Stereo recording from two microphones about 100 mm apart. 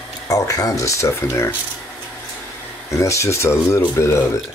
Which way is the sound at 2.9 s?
30° left (ahead or behind).